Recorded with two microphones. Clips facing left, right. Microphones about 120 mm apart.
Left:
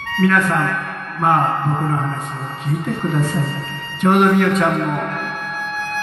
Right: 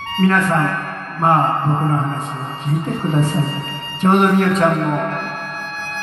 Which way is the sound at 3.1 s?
35° right (ahead or behind).